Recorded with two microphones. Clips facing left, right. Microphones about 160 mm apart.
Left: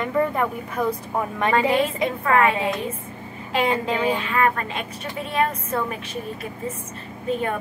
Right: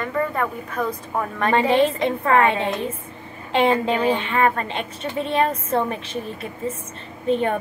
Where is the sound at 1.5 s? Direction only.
25° right (ahead or behind).